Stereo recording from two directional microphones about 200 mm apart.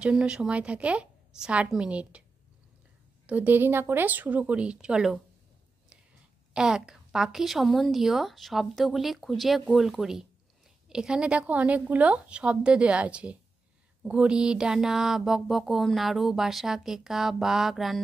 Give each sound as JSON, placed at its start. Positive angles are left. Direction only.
{"t": 0.0, "sound": "speech", "side_deg": -5}
{"t": 3.3, "sound": "speech", "side_deg": -10}
{"t": 6.5, "sound": "speech", "side_deg": -5}